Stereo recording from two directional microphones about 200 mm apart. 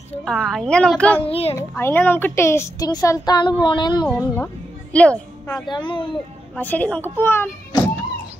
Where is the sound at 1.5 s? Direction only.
10° left (ahead or behind).